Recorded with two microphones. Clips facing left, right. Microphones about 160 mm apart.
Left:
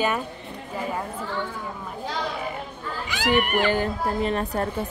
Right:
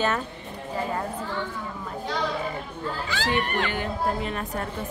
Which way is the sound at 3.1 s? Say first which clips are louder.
Left 5 dB; 15° left (ahead or behind).